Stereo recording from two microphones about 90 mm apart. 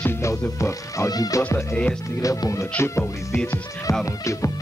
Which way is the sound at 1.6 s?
15° left (ahead or behind).